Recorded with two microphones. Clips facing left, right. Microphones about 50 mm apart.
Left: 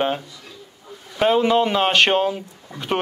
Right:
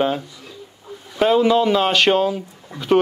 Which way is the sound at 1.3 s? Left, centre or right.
Centre.